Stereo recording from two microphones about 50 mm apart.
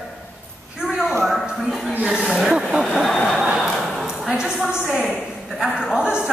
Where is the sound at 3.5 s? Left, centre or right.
Centre.